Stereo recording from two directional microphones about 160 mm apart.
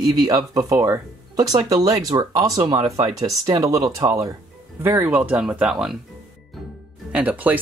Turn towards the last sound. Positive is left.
turn(degrees=-10)  # may be behind; listen again after turning